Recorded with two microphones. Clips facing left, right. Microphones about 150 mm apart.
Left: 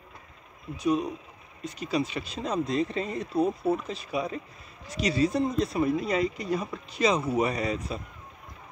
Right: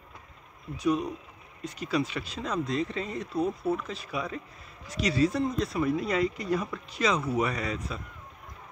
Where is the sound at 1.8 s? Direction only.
20° left (ahead or behind).